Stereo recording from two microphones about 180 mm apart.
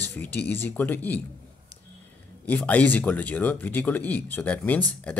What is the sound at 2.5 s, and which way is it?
Speech, 10° left (ahead or behind).